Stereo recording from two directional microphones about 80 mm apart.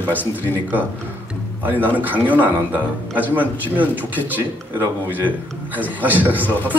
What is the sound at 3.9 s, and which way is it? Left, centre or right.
Speech, left.